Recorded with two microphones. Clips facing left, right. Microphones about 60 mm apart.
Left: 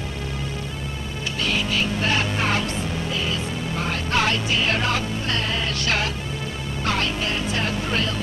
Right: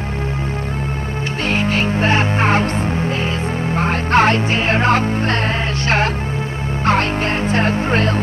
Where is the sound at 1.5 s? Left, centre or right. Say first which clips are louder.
Right 8 dB; right.